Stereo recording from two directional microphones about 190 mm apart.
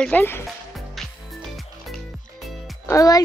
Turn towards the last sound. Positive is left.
turn(degrees=20)  # may be behind; listen again after turning